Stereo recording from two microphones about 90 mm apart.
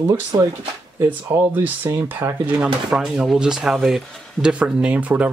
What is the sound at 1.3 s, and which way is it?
Speech, 45° right (ahead or behind).